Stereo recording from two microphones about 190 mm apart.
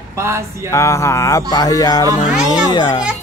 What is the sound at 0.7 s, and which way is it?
Speech, 15° left (ahead or behind).